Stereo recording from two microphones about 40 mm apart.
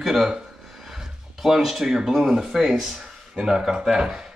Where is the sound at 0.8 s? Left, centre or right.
Centre.